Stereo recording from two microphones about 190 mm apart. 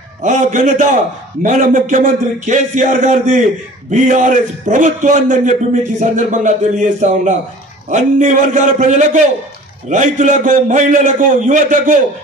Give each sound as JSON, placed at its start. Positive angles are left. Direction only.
{"t": 0.2, "sound": "a man's voice", "side_deg": -40}